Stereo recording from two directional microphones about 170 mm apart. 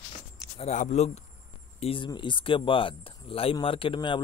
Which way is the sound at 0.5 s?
45° left (ahead or behind).